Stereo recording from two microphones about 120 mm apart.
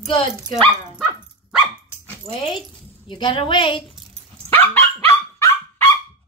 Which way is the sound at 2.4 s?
45° left (ahead or behind).